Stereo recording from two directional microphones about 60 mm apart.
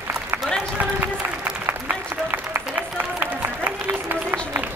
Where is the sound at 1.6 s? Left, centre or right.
Right.